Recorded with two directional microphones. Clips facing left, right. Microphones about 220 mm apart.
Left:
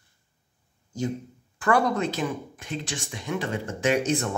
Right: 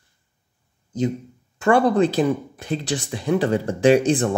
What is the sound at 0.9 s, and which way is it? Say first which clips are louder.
Speech: right 6 dB; 20° right (ahead or behind).